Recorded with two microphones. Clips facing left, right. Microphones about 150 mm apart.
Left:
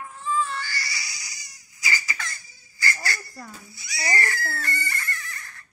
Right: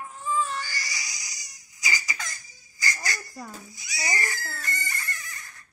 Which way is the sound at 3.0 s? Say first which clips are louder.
Left 1 dB; 15° right (ahead or behind).